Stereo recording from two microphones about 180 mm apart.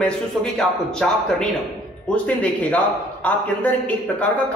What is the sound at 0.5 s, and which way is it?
A man's voice, 5° left (ahead or behind).